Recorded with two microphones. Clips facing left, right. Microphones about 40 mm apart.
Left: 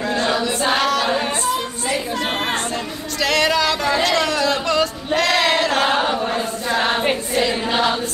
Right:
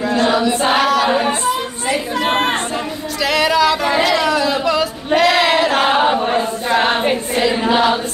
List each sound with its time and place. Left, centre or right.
0.3 s chant: centre
2.2 s chatter: right
3.2 s music: centre
4.0 s a sound: centre; by 6.2 s right
6.7 s choir: right
7.6 s choir: centre